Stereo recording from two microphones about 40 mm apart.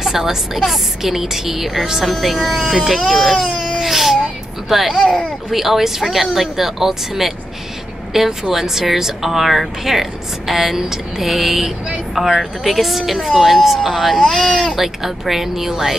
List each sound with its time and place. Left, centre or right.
0.0 s speech: centre
2.0 s speech: centre
5.0 s speech: centre
5.5 s speech: centre